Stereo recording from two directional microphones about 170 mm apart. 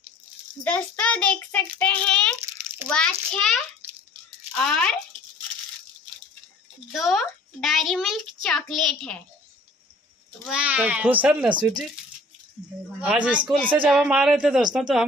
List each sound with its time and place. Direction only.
0.7 s child singing: 10° left (ahead or behind)
2.9 s a child's voice: 5° left (ahead or behind)
6.9 s a child's voice: centre (ahead or behind)
10.4 s a child's voice: 5° right (ahead or behind)
13.0 s a child's voice: 5° right (ahead or behind)